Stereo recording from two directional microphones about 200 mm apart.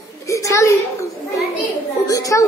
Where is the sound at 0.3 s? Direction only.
15° left (ahead or behind).